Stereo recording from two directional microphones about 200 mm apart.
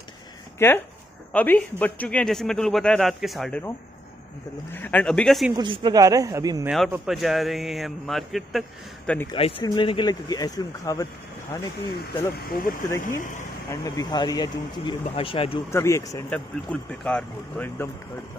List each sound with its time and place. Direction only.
0.6 s speech: 10° left (ahead or behind)
4.7 s speech: 10° left (ahead or behind)
5.6 s speech: 25° right (ahead or behind)
6.9 s speech: centre (ahead or behind)
9.3 s speech: 25° left (ahead or behind)
12.4 s speech: 45° left (ahead or behind)
12.8 s speech: 15° left (ahead or behind)
15.7 s speech: 15° left (ahead or behind)